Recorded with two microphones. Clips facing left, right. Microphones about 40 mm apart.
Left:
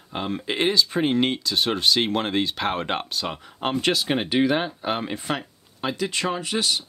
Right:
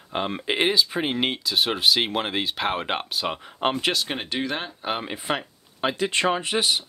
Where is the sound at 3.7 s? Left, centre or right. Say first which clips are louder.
Left 2 dB; centre.